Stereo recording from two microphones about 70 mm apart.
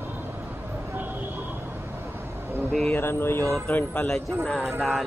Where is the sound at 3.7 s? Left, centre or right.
Centre.